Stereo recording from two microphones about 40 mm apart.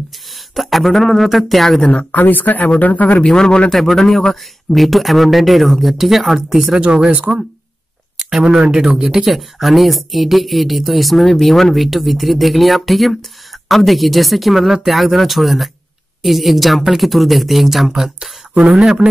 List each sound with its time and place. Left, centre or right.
0.3 s speech: centre
2.1 s speech: left
3.3 s a man's voice: centre
6.8 s speech: right
8.2 s a sound: centre
8.5 s speech: centre
9.3 s speech: centre
17.9 s speech: centre